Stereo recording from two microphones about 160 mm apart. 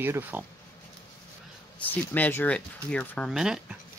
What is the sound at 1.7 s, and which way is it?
Speech, 10° left (ahead or behind).